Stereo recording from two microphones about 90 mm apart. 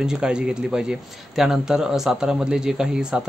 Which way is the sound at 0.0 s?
10° right (ahead or behind).